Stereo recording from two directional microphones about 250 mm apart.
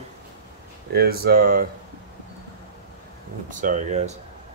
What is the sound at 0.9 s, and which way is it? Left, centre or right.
Speech, right.